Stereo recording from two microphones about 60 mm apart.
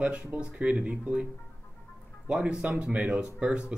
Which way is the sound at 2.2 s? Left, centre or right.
Centre.